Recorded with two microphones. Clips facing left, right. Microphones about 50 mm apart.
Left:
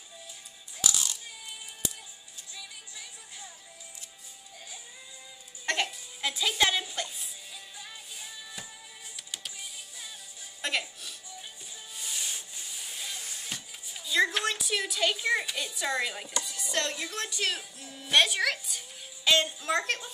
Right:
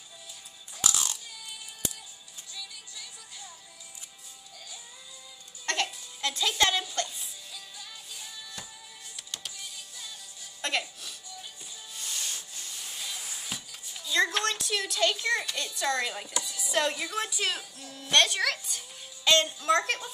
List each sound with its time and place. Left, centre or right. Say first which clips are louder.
2.5 s music: right 1 dB; left
5.9 s music: even; centre
7.7 s music: even; centre
11.9 s rub: even; centre
13.7 s a child's voice: even; centre